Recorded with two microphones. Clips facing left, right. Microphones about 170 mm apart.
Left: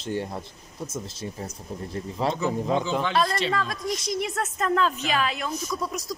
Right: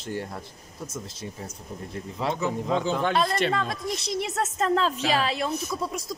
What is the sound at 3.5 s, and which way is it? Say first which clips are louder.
Speech: even; 25° right (ahead or behind).